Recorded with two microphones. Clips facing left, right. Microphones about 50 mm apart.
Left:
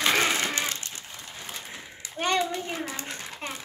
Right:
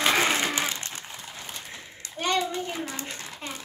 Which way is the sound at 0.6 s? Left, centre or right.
Right.